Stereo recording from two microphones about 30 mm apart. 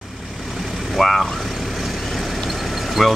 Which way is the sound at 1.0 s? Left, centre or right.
Centre.